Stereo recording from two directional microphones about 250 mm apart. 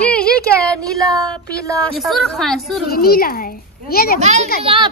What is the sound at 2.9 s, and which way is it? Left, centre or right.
A child's voice, left.